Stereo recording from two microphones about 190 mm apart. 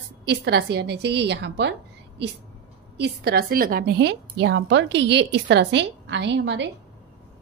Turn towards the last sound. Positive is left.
turn(degrees=-65)  # may be behind; listen again after turning